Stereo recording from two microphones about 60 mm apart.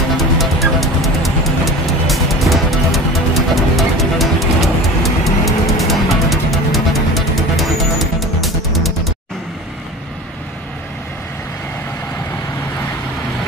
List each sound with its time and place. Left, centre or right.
0.2 s music: centre